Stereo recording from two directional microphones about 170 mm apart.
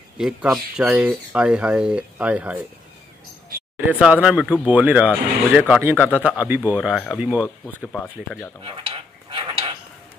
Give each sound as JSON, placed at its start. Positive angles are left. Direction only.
{"t": 0.2, "sound": "speech", "side_deg": -5}
{"t": 4.0, "sound": "speech", "side_deg": -5}
{"t": 8.6, "sound": "dishes", "side_deg": -30}